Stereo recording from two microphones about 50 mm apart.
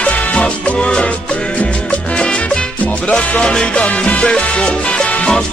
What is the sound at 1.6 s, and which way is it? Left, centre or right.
Salsa music, left.